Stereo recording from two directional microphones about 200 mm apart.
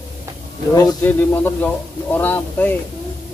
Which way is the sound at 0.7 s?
15° left (ahead or behind).